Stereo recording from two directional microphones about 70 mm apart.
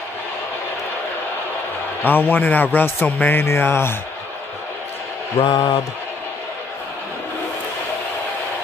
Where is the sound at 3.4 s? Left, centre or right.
Left.